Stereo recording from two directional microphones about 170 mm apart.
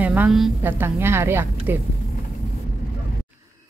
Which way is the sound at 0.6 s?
15° right (ahead or behind).